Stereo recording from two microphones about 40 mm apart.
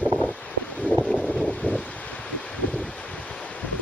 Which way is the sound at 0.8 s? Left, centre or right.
Centre.